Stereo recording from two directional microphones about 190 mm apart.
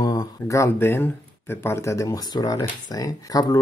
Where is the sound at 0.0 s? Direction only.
20° left (ahead or behind).